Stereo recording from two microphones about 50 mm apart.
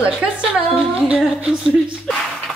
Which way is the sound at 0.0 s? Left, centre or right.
Right.